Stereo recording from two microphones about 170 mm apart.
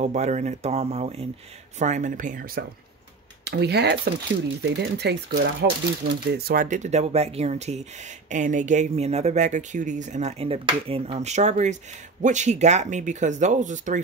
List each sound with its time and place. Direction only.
0.0 s speech: 45° right (ahead or behind)
3.4 s speech: 75° right (ahead or behind); by 14.0 s 45° right (ahead or behind)